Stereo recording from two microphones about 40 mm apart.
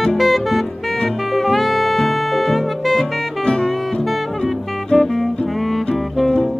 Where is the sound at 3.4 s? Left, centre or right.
Left.